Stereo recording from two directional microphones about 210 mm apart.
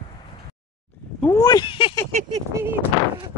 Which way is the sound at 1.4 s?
20° left (ahead or behind).